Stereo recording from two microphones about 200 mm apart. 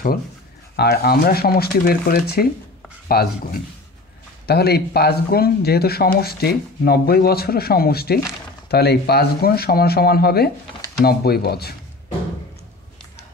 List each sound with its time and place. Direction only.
0.7 s speech: 50° left (ahead or behind)